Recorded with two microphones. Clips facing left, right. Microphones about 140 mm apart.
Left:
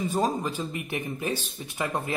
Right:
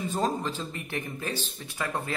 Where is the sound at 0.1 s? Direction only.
10° left (ahead or behind).